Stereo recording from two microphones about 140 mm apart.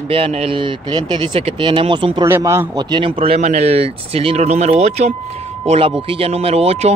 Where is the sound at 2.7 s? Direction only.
35° right (ahead or behind); by 5.1 s 55° right (ahead or behind).